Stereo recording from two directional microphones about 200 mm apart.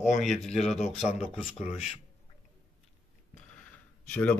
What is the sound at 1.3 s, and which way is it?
Speech, 30° left (ahead or behind).